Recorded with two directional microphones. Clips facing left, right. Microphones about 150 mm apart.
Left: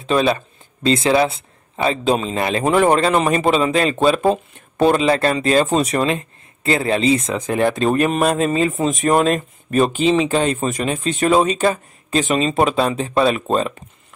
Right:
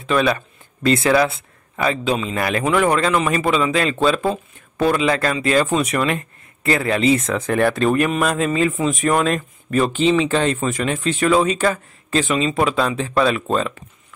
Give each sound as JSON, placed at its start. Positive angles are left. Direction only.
{"t": 0.0, "sound": "speech", "side_deg": 25}
{"t": 4.9, "sound": "speech", "side_deg": 30}
{"t": 7.9, "sound": "speech", "side_deg": 30}